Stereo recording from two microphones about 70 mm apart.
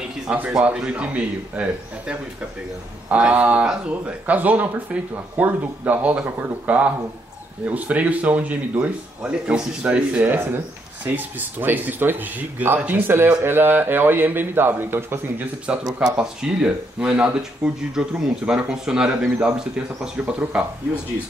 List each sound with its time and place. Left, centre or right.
0.3 s a man's voice: centre; by 15.4 s right
15.7 s a man's voice: centre
20.2 s a man's voice: centre